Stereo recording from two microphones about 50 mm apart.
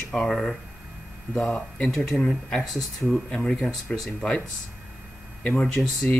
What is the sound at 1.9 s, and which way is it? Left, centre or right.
Speech, centre.